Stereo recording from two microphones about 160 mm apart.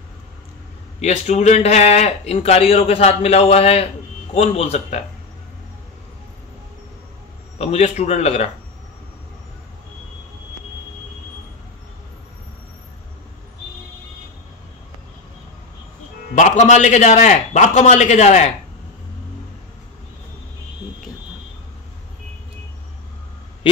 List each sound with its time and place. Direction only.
1.0 s a man's voice: 45° left (ahead or behind)
7.5 s a man's voice: 40° left (ahead or behind)
16.3 s a man's voice: 50° left (ahead or behind)